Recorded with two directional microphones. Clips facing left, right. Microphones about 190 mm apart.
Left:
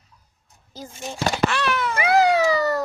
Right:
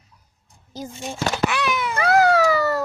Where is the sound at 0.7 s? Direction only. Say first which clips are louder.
Right 3 dB; 15° right (ahead or behind).